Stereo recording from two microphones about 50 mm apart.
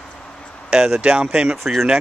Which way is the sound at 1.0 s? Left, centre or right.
Right.